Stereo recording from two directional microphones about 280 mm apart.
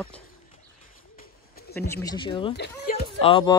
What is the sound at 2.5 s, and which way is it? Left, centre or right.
Speech, left.